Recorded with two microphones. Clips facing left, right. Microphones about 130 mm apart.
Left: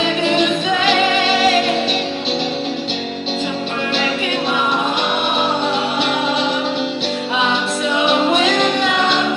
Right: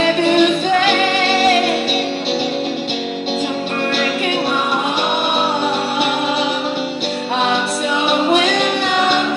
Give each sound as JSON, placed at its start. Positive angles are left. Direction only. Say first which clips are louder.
{"t": 0.4, "sound": "music", "louder": "right 3 dB", "side_deg": -55}